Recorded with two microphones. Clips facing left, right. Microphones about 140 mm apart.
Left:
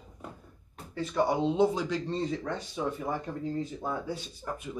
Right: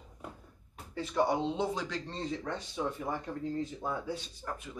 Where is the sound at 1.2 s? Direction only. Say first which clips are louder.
Left 4 dB; 5° left (ahead or behind).